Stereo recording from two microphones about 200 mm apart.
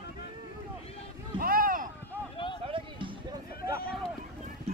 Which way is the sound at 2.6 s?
25° right (ahead or behind).